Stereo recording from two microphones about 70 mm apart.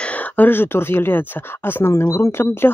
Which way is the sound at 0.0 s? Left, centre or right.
Left.